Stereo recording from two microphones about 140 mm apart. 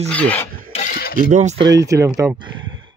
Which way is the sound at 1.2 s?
65° right (ahead or behind).